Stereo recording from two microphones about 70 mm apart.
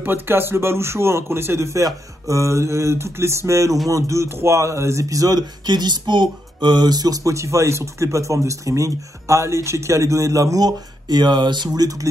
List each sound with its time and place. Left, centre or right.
0.0 s a man's voice: right
7.3 s speech: right